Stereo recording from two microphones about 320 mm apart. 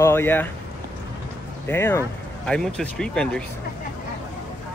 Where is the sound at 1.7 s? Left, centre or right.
Centre.